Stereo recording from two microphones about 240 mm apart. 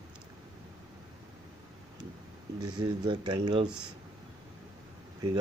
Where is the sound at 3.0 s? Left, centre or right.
Centre.